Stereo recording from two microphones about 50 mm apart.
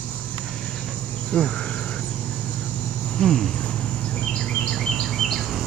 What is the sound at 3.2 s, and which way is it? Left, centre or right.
Speech, centre.